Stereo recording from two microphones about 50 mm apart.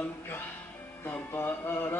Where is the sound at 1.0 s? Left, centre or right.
Left.